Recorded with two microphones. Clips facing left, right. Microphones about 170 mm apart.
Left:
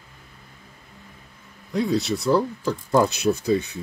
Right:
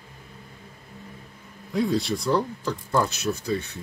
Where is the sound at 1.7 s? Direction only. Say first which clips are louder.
Left 1 dB; centre (ahead or behind).